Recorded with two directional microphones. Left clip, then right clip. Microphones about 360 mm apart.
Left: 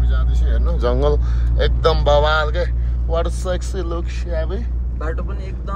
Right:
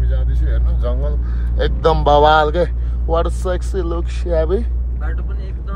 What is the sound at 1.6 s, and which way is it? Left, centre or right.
A man's voice, centre.